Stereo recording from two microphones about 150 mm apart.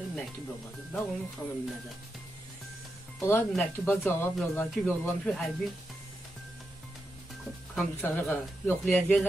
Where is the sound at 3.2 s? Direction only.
15° left (ahead or behind).